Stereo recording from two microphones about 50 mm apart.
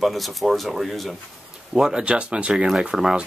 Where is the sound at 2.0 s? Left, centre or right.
Right.